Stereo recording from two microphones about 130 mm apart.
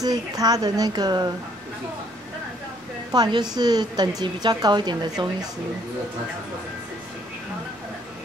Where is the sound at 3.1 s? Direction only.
35° right (ahead or behind).